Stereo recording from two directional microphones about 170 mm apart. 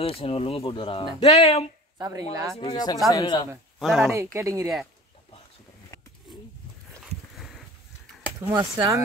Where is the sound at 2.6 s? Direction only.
25° left (ahead or behind).